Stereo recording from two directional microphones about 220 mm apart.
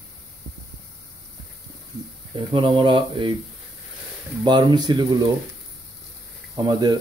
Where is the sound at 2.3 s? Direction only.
20° right (ahead or behind).